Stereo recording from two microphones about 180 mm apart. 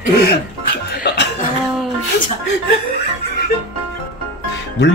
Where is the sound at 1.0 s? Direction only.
70° left (ahead or behind).